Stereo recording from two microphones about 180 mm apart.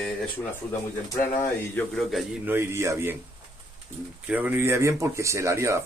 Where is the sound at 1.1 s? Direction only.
20° left (ahead or behind).